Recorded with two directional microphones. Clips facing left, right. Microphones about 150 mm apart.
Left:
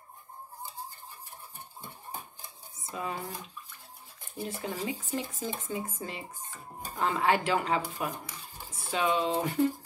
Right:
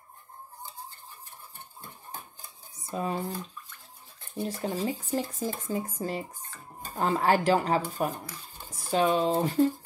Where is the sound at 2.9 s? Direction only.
35° right (ahead or behind).